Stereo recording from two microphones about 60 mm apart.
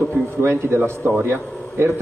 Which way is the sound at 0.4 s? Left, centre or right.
Right.